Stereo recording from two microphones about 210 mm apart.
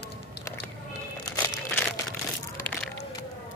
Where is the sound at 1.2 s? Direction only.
10° left (ahead or behind).